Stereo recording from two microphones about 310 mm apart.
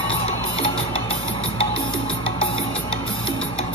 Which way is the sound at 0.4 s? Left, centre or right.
Centre.